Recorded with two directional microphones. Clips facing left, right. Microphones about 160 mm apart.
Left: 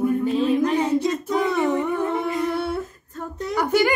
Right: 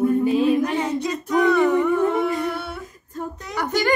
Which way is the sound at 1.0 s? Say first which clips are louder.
Right 2 dB; 25° left (ahead or behind).